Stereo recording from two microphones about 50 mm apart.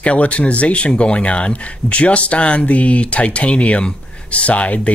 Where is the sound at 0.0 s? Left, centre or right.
Left.